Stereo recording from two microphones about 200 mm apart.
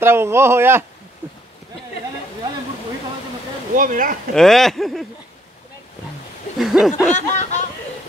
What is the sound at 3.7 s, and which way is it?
Speech, 40° right (ahead or behind).